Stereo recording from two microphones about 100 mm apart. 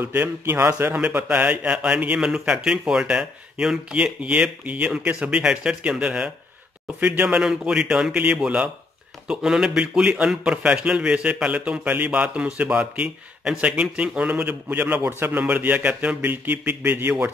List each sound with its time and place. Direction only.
0.0 s a man's voice: 20° right (ahead or behind)